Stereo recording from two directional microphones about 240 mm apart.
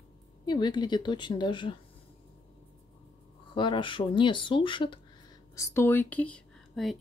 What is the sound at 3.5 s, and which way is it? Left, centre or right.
Speech, centre.